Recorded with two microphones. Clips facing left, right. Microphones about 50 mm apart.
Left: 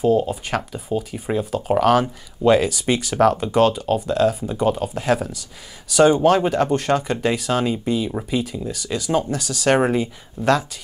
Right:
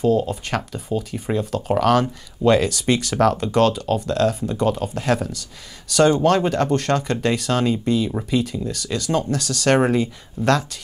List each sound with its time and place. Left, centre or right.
0.0 s speech: centre